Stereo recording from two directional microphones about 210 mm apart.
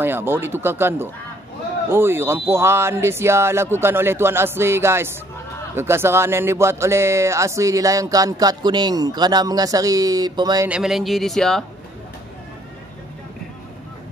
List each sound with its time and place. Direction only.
0.0 s speech: 10° right (ahead or behind)
10.7 s speech: centre (ahead or behind)